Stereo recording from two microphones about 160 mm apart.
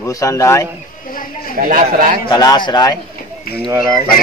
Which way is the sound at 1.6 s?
60° right (ahead or behind).